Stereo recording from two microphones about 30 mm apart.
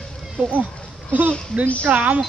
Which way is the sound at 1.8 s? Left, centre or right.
Right.